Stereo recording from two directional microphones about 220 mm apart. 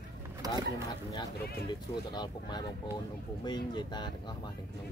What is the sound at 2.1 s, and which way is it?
Speech, 20° left (ahead or behind).